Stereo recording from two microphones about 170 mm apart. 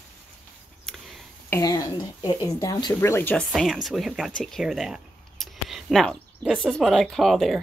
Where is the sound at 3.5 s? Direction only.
Centre (ahead or behind).